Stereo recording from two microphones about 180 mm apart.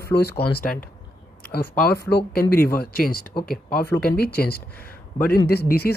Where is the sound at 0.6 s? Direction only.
50° left (ahead or behind).